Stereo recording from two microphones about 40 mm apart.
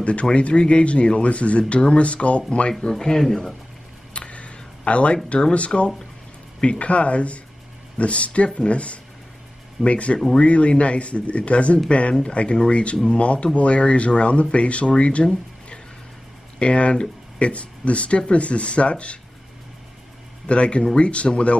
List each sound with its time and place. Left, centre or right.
0.0 s speech: left
2.9 s speech: centre
4.1 s a sound: left
6.6 s speech: left
16.5 s speech: left
20.4 s speech: left